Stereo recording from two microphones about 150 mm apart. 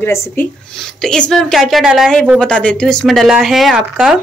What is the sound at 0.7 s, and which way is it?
Speech, 5° left (ahead or behind).